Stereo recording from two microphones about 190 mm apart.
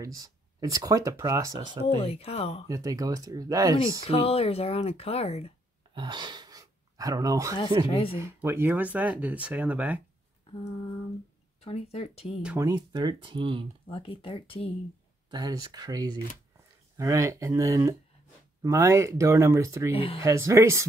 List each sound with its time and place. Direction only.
0.0 s speech: 20° right (ahead or behind)
2.0 s speech: 30° left (ahead or behind)
2.7 s speech: 20° right (ahead or behind)
4.1 s speech: 30° left (ahead or behind)
5.9 s speech: 25° right (ahead or behind)
7.8 s speech: 30° left (ahead or behind)
8.2 s speech: 10° right (ahead or behind)
10.5 s speech: 30° left (ahead or behind)
12.4 s speech: 5° right (ahead or behind)
12.6 s speech: 20° right (ahead or behind)
13.8 s speech: 30° left (ahead or behind)
15.2 s speech: 20° right (ahead or behind)
19.9 s speech: 30° left (ahead or behind)
20.2 s speech: 15° right (ahead or behind)